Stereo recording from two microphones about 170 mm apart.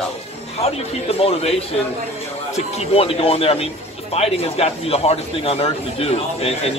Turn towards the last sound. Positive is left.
turn(degrees=35)  # may be behind; listen again after turning